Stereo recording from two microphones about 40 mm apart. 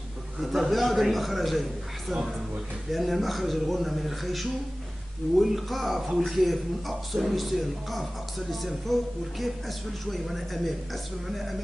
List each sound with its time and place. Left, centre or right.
0.4 s a man's voice: centre